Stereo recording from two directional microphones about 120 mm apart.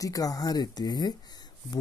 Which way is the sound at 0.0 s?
30° left (ahead or behind).